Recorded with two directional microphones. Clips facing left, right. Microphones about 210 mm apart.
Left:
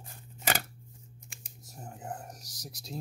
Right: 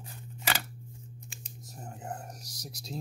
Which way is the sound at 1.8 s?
5° left (ahead or behind).